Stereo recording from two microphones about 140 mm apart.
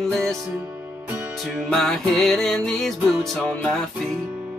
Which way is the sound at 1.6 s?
5° left (ahead or behind).